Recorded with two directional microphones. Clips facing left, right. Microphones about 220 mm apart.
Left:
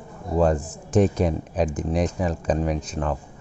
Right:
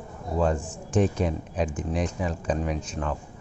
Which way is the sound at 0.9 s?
40° left (ahead or behind).